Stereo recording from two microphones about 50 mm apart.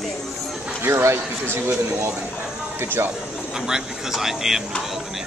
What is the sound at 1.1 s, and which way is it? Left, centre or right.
Speech, right.